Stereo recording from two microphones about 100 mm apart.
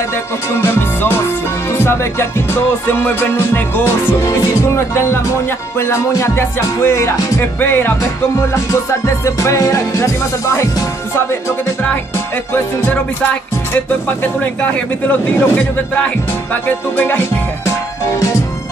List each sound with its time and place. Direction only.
0.6 s music: 25° left (ahead or behind)
2.9 s music: 20° left (ahead or behind)
9.0 s music: 30° left (ahead or behind)
14.4 s a man's voice: 15° left (ahead or behind)
16.6 s music: 20° left (ahead or behind)